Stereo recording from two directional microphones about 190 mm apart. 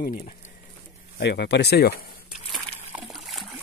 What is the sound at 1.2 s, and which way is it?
Speech, 60° left (ahead or behind).